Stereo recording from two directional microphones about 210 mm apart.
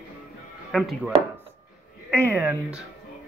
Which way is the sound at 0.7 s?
Centre (ahead or behind).